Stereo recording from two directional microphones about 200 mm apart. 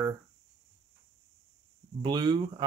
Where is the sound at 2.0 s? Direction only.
20° right (ahead or behind).